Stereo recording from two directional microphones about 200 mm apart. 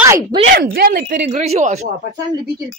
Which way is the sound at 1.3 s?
35° right (ahead or behind).